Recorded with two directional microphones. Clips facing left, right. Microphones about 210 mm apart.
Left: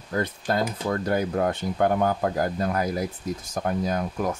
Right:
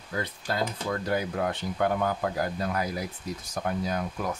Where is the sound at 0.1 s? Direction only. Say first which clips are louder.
Left 6 dB; 45° left (ahead or behind).